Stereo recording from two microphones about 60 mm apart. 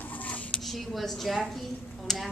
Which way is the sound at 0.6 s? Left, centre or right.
Centre.